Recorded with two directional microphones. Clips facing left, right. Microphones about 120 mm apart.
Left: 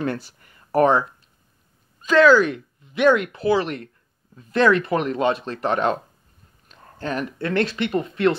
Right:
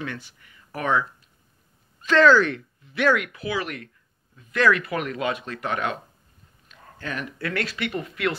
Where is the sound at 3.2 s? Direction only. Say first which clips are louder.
Left 8 dB; 30° left (ahead or behind).